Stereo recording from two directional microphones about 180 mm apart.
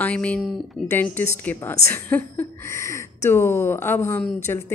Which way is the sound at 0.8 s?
10° left (ahead or behind).